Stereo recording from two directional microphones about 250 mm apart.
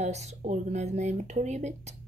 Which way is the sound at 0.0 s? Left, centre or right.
Right.